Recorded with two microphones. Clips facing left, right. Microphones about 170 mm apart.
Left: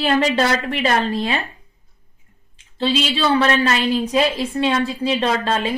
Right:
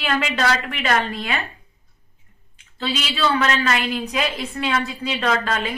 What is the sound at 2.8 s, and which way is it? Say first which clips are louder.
A woman's voice: left 4 dB; 30° left (ahead or behind).